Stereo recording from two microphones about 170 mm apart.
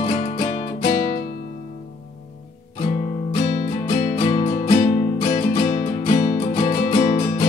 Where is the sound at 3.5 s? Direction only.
45° left (ahead or behind).